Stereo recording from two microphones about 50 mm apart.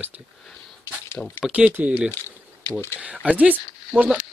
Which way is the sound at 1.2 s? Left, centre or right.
Left.